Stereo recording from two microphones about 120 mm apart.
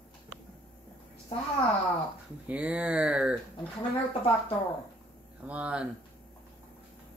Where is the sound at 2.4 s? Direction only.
10° right (ahead or behind).